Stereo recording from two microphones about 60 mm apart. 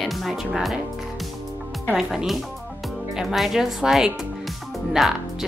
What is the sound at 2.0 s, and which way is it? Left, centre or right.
Speech, centre.